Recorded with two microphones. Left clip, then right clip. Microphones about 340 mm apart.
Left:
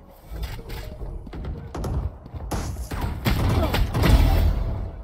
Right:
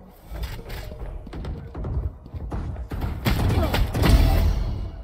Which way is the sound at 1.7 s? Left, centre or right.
Left.